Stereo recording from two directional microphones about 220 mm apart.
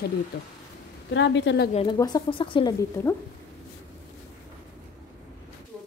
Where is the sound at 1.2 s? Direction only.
55° left (ahead or behind).